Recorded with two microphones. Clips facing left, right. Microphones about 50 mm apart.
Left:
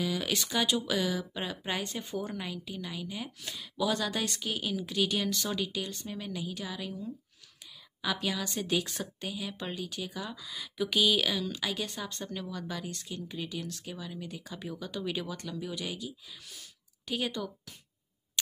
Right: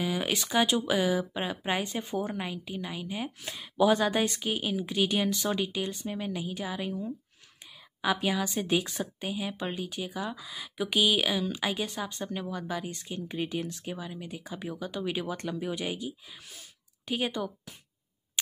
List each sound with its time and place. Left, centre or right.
0.0 s a sound: right
0.5 s a woman's voice: right
13.3 s a woman's voice: right; by 15.2 s centre
15.2 s speech: right